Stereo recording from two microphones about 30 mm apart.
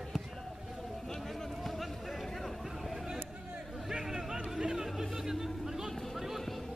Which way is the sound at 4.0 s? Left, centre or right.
Centre.